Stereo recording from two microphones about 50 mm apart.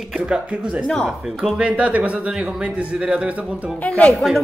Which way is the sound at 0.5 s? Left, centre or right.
Right.